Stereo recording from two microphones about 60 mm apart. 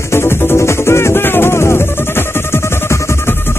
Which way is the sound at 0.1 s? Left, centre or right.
Left.